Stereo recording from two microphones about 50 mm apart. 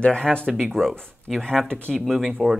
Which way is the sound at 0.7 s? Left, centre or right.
Centre.